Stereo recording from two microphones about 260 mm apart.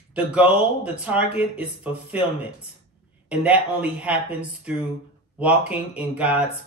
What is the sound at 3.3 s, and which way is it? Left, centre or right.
Speech, centre.